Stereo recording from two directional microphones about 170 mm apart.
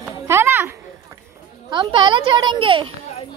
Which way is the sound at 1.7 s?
30° right (ahead or behind).